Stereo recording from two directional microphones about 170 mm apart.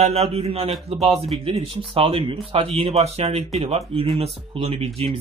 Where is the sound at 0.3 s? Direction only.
35° right (ahead or behind).